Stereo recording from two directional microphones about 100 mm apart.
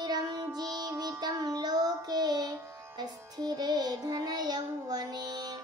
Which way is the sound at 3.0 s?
40° right (ahead or behind).